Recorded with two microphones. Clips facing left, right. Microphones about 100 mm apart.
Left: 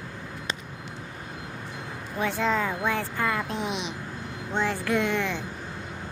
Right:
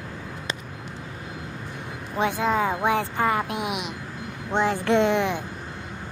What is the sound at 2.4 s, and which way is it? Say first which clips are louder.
Speech: right 2 dB; 15° right (ahead or behind).